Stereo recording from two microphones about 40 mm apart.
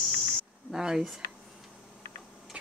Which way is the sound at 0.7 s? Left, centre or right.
Centre.